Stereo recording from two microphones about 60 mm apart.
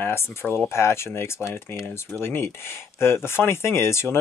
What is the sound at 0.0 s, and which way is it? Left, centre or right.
Speech, left.